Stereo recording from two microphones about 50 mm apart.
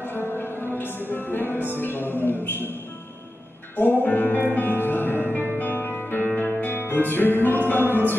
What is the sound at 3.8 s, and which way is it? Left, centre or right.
Music, left.